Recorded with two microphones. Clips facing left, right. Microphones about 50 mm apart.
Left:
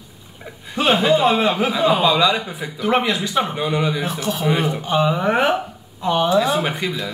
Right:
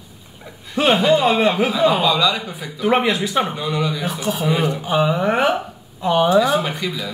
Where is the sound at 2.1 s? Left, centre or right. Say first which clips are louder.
Left 1 dB; centre.